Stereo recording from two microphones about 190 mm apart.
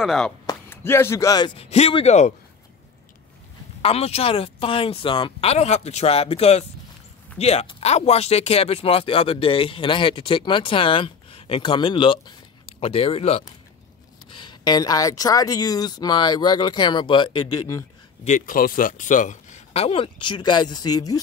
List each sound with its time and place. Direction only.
0.0 s speech: centre (ahead or behind)
0.5 s speech: 15° left (ahead or behind); by 2.3 s 35° left (ahead or behind)
3.8 s speech: 30° left (ahead or behind)
18.2 s speech: 45° left (ahead or behind); by 21.2 s 20° left (ahead or behind)